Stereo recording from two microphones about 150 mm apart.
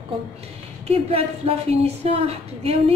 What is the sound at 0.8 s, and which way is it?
A woman's voice, 40° right (ahead or behind).